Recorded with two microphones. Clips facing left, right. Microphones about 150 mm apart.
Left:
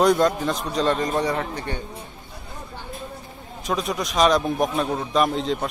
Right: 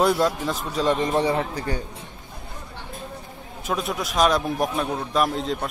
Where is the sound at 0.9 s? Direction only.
25° right (ahead or behind).